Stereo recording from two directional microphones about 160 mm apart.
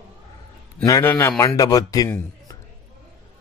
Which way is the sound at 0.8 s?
15° left (ahead or behind).